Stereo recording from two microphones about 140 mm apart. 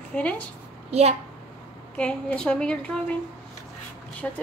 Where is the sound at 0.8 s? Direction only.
50° right (ahead or behind).